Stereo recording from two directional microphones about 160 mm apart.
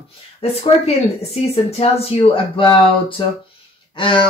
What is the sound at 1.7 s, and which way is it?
Speech, 40° left (ahead or behind).